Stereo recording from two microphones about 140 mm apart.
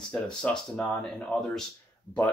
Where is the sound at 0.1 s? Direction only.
5° left (ahead or behind).